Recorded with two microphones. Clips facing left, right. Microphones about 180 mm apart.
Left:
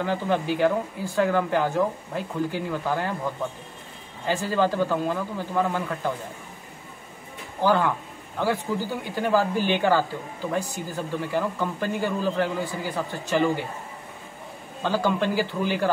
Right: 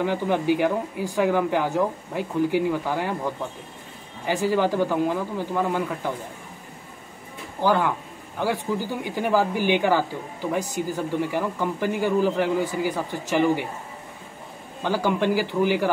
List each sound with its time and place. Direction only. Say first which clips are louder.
0.0 s speech: right 2 dB; 15° right (ahead or behind)
4.3 s speech: right 2 dB; 15° right (ahead or behind)
7.6 s speech: even; 15° right (ahead or behind)
14.8 s speech: right 1 dB; 15° right (ahead or behind)